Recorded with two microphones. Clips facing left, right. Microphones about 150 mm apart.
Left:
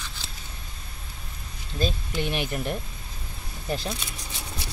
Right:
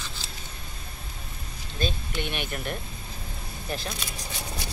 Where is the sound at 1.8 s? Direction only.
35° left (ahead or behind).